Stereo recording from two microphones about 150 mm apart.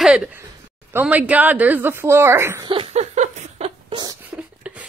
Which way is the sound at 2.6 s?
40° right (ahead or behind).